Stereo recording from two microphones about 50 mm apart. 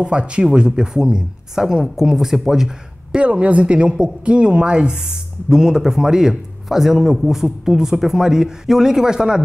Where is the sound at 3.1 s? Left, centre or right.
Right.